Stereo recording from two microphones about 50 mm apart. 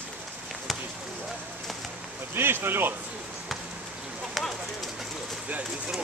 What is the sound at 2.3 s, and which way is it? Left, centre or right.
Speech, right.